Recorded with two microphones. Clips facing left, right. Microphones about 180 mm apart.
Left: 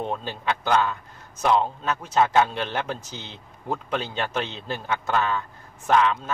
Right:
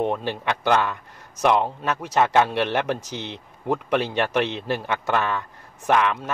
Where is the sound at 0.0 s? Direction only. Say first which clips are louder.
Right 4 dB; 70° right (ahead or behind).